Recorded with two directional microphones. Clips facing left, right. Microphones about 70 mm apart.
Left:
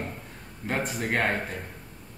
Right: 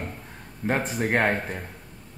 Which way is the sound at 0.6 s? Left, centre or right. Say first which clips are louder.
Right 4 dB; right.